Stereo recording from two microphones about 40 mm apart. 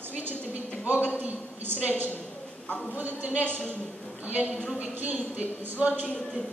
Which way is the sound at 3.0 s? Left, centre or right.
Right.